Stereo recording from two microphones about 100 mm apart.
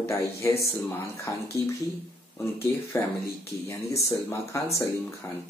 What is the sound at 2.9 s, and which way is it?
Speech, 25° left (ahead or behind).